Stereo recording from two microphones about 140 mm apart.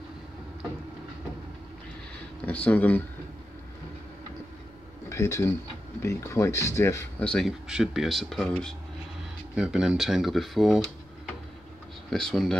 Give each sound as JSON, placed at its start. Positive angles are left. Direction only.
{"t": 2.4, "sound": "speech", "side_deg": 10}
{"t": 5.1, "sound": "speech", "side_deg": 20}
{"t": 7.2, "sound": "speech", "side_deg": 0}
{"t": 12.1, "sound": "speech", "side_deg": 5}